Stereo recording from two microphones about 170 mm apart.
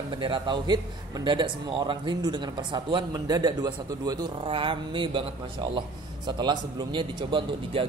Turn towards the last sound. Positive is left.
turn(degrees=-30)  # may be behind; listen again after turning